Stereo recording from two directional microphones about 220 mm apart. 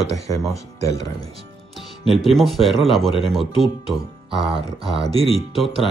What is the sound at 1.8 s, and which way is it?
Speech, centre (ahead or behind).